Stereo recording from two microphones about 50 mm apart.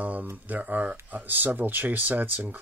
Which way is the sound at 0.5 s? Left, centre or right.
Right.